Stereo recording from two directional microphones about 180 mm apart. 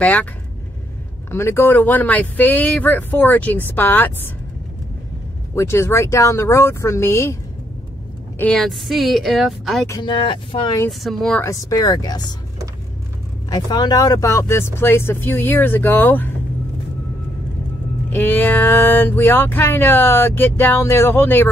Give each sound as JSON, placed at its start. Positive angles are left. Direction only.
{"t": 0.0, "sound": "speech", "side_deg": 10}
{"t": 1.3, "sound": "speech", "side_deg": 15}
{"t": 5.5, "sound": "speech", "side_deg": 15}
{"t": 8.4, "sound": "a woman's voice", "side_deg": 5}
{"t": 9.8, "sound": "speech", "side_deg": 25}
{"t": 10.9, "sound": "a woman's voice", "side_deg": 0}
{"t": 11.4, "sound": "speech", "side_deg": 20}
{"t": 13.5, "sound": "speech", "side_deg": 25}
{"t": 18.1, "sound": "speech", "side_deg": 10}